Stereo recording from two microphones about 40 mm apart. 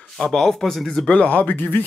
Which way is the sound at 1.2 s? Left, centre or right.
Left.